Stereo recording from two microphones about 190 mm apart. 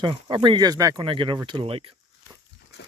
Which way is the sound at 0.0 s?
25° right (ahead or behind).